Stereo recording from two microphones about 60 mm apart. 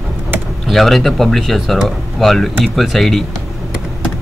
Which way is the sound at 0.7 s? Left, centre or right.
Centre.